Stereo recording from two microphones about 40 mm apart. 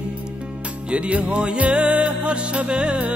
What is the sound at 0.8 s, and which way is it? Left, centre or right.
Music, right.